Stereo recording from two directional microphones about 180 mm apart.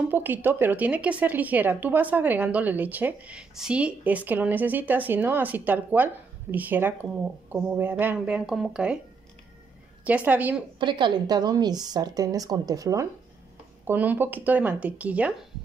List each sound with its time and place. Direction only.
0.1 s speech: 10° right (ahead or behind)
10.0 s speech: 10° right (ahead or behind)
10.8 s a woman's voice: 25° right (ahead or behind); by 15.3 s 10° right (ahead or behind)